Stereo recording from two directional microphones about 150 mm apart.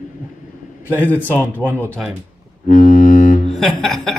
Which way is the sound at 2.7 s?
60° left (ahead or behind).